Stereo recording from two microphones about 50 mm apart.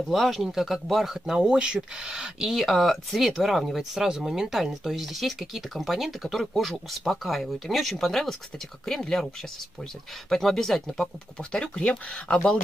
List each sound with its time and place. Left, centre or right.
0.1 s speech: centre
10.3 s speech: centre